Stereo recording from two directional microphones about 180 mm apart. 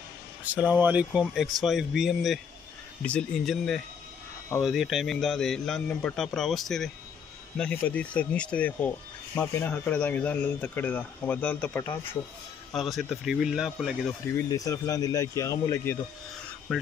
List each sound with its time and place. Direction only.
0.4 s a man's voice: 10° right (ahead or behind); by 12.2 s 15° left (ahead or behind)
12.7 s a man's voice: centre (ahead or behind)
14.3 s speech: 20° left (ahead or behind)